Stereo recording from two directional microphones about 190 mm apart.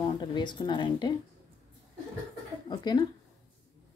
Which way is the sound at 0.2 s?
25° left (ahead or behind).